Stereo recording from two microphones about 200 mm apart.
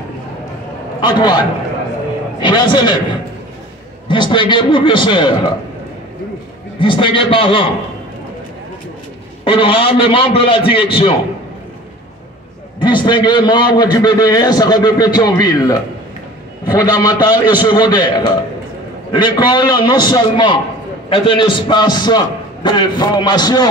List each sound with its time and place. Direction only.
1.0 s a man's voice: 20° left (ahead or behind)
2.4 s a man's voice: 25° left (ahead or behind)
4.1 s a man's voice: 25° left (ahead or behind)
6.8 s a man's voice: 25° left (ahead or behind)
9.4 s a man's voice: 25° left (ahead or behind)
12.8 s a man's voice: 20° left (ahead or behind)